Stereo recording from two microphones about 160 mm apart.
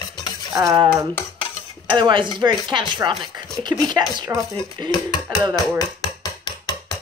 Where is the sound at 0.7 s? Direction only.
30° right (ahead or behind).